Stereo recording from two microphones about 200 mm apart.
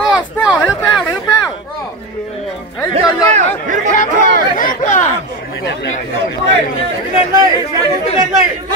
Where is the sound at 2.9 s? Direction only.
35° right (ahead or behind).